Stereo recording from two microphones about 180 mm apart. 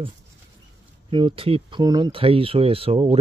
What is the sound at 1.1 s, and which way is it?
Speech, 30° right (ahead or behind).